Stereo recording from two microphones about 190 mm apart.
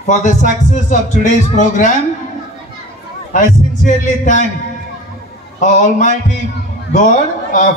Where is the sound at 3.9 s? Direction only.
40° left (ahead or behind).